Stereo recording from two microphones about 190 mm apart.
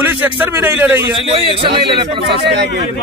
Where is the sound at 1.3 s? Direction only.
30° right (ahead or behind).